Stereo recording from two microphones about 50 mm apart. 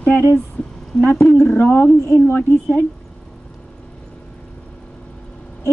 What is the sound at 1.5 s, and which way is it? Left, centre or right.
Speech, left.